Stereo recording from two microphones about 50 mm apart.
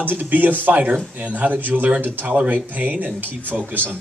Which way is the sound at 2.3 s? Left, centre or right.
Right.